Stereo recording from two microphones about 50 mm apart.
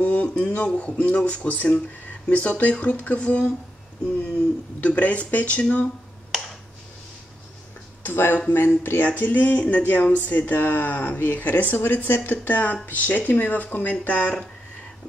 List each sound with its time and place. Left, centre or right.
0.0 s speech: left
4.7 s speech: left
8.0 s speech: left
9.2 s speech: left